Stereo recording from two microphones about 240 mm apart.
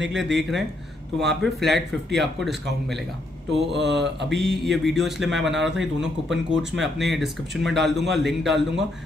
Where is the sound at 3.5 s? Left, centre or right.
Right.